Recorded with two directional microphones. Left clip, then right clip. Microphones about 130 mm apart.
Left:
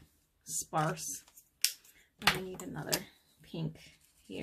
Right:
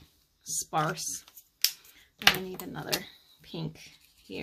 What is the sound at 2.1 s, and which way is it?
Speech, 30° right (ahead or behind).